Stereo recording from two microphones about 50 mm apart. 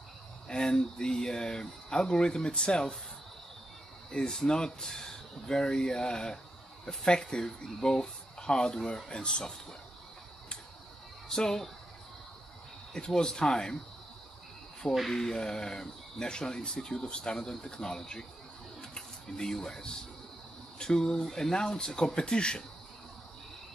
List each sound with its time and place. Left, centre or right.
0.5 s speech: centre
4.1 s speech: centre
11.2 s speech: centre
12.9 s speech: centre
15.0 s speech: centre